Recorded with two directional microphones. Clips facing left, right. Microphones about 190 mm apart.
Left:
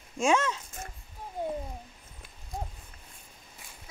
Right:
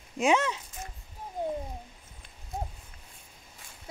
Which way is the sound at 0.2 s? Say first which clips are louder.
Right 1 dB; 15° right (ahead or behind).